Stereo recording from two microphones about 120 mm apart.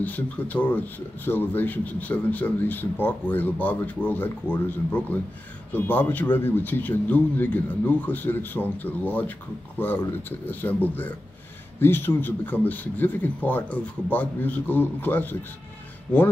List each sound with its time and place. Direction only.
0.0 s speech: 15° left (ahead or behind)